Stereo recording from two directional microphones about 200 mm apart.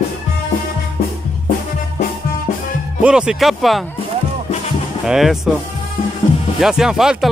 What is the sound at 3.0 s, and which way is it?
Speech, 5° right (ahead or behind).